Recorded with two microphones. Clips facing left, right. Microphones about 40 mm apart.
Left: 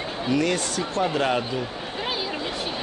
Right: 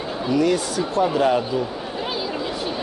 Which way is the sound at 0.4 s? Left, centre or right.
Centre.